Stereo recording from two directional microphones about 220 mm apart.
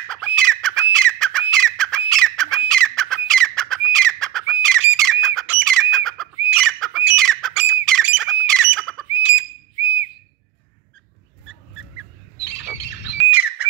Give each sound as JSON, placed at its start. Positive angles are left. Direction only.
{"t": 0.1, "sound": "squawk", "side_deg": 5}
{"t": 2.7, "sound": "bird", "side_deg": 5}
{"t": 8.1, "sound": "squawk", "side_deg": -5}
{"t": 12.4, "sound": "squawk", "side_deg": 50}
{"t": 13.2, "sound": "squawk", "side_deg": -10}